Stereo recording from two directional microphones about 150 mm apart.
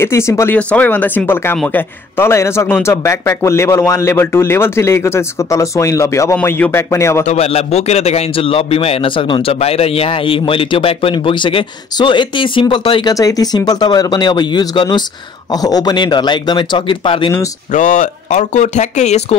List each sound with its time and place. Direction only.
0.0 s a man's voice: 20° left (ahead or behind)
7.2 s a man's voice: 45° left (ahead or behind)
13.1 s a man's voice: 25° left (ahead or behind)
17.7 s speech: 55° left (ahead or behind)